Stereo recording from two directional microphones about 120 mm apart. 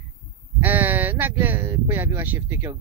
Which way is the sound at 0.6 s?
15° right (ahead or behind).